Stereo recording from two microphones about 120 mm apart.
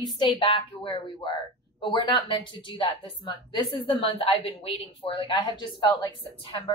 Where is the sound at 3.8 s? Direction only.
50° left (ahead or behind).